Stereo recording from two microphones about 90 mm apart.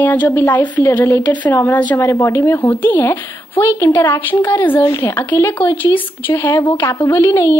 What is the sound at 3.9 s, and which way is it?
Speech, 50° left (ahead or behind).